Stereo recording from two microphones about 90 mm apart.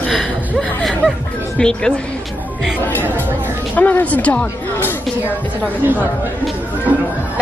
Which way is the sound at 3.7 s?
15° left (ahead or behind).